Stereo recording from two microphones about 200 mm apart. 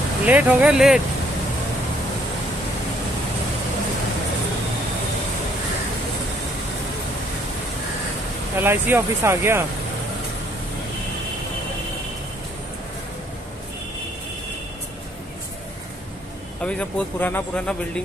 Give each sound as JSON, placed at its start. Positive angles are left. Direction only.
{"t": 0.2, "sound": "speech", "side_deg": -5}
{"t": 8.5, "sound": "speech", "side_deg": -10}
{"t": 16.6, "sound": "speech", "side_deg": 5}